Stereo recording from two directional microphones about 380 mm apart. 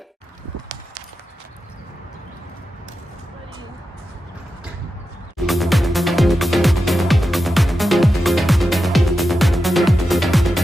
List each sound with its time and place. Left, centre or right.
5.5 s music: centre